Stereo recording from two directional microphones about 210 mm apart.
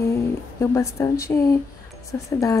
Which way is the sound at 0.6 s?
15° left (ahead or behind).